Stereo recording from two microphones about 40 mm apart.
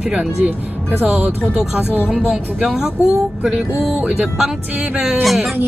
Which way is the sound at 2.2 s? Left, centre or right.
Right.